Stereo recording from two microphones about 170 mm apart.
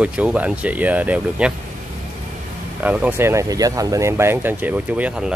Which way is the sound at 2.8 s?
10° right (ahead or behind).